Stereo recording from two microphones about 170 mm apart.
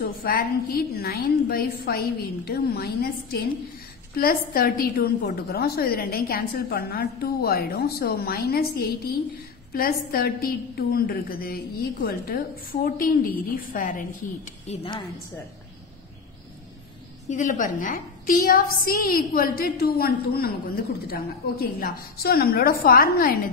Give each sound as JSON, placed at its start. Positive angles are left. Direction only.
{"t": 0.0, "sound": "a woman's voice", "side_deg": 60}
{"t": 14.7, "sound": "a woman's voice", "side_deg": 30}
{"t": 17.3, "sound": "a woman's voice", "side_deg": 50}